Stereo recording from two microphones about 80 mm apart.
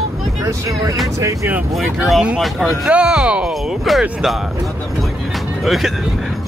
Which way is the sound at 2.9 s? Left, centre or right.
Centre.